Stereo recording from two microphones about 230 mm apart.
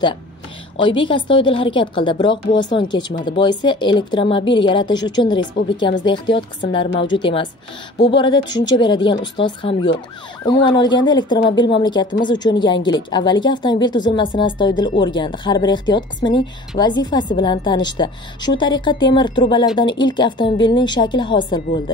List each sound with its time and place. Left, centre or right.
0.7 s a woman's voice: left